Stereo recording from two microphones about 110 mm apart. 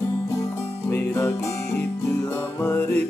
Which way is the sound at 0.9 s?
25° left (ahead or behind).